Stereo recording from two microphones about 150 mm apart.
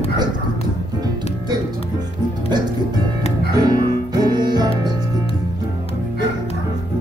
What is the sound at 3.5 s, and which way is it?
Music, 25° right (ahead or behind).